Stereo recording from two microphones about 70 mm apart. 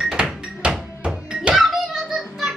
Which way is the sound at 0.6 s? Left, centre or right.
Centre.